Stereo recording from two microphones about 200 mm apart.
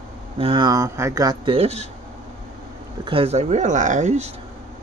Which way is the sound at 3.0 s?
30° right (ahead or behind).